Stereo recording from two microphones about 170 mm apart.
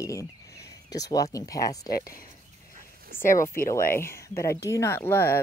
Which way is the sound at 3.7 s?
15° left (ahead or behind).